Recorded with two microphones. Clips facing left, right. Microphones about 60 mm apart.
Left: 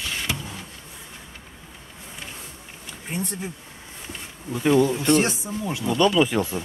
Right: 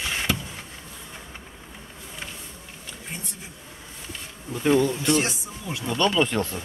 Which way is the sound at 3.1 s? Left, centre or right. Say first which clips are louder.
Left 12 dB; left.